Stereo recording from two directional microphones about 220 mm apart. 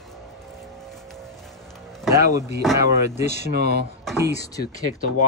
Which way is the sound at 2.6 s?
Centre (ahead or behind).